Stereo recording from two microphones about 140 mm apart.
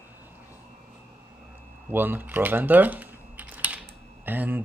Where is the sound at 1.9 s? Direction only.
15° right (ahead or behind).